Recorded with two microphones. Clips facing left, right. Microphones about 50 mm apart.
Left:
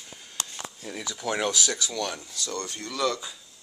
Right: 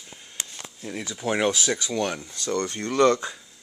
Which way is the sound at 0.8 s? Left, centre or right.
Centre.